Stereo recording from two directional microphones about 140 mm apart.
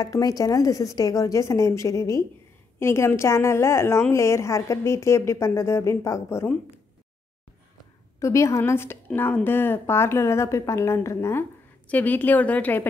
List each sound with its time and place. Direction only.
0.0 s a woman's voice: 25° left (ahead or behind)
8.2 s a woman's voice: 20° left (ahead or behind)